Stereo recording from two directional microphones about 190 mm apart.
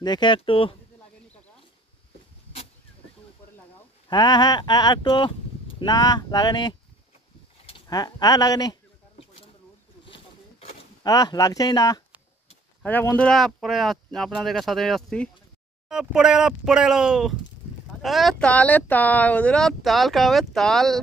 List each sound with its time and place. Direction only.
0.0 s speech: 25° left (ahead or behind)
4.1 s speech: 25° left (ahead or behind)
11.1 s speech: 20° left (ahead or behind); by 21.0 s centre (ahead or behind)